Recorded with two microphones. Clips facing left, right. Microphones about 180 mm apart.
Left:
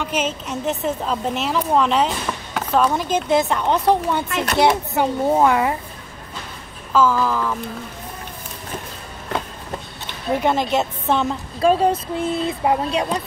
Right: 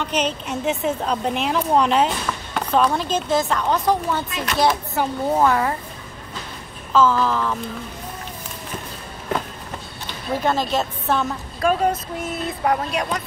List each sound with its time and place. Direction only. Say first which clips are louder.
0.0 s a woman's voice: even; 5° left (ahead or behind)
2.5 s chop: even; 5° left (ahead or behind)
2.9 s a woman's voice: left 2 dB; 15° left (ahead or behind)
6.9 s a child's voice: even; 10° left (ahead or behind)
10.3 s a woman's voice: left 2 dB; 20° left (ahead or behind)